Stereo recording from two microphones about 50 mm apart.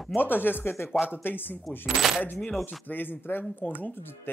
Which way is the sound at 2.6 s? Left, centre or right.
Left.